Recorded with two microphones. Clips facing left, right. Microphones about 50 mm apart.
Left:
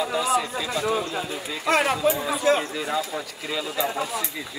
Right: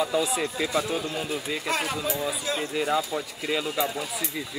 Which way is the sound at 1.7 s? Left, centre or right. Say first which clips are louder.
Left 9 dB; left.